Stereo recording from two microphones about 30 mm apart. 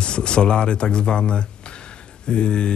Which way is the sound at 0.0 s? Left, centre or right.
Left.